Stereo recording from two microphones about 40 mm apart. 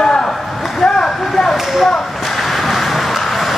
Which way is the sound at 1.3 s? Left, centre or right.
Centre.